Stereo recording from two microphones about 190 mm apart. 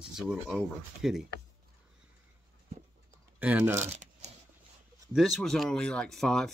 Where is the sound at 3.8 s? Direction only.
35° right (ahead or behind).